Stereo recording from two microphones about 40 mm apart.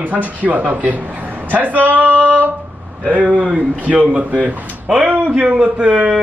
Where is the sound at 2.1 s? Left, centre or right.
Left.